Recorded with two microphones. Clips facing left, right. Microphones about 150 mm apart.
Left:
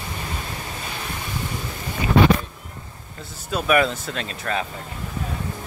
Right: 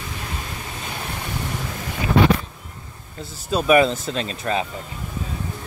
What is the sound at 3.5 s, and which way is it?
Speech, 25° right (ahead or behind).